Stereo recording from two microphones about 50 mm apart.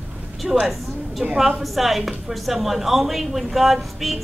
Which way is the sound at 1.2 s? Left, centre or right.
Centre.